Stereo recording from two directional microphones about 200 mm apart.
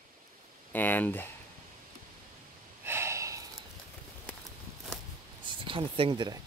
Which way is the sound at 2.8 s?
10° right (ahead or behind).